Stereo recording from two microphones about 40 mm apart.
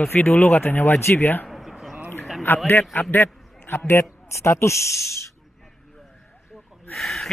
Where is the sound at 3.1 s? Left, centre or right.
Left.